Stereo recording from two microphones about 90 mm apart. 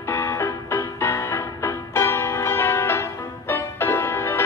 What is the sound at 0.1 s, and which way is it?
Music, 35° left (ahead or behind).